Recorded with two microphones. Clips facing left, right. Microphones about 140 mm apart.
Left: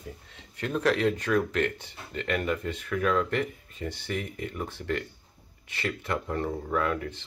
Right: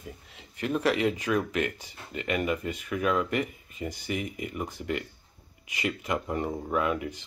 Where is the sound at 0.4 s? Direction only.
5° right (ahead or behind).